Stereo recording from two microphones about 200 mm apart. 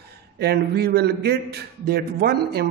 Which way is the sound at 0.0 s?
55° right (ahead or behind).